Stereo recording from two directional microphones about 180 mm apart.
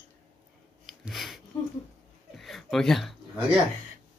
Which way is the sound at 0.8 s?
Centre (ahead or behind).